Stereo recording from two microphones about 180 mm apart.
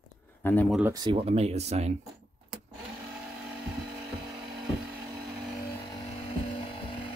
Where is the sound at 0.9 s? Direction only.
30° right (ahead or behind).